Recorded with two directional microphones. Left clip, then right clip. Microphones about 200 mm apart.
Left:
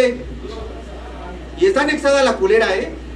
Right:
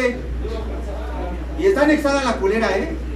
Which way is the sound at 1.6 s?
50° left (ahead or behind).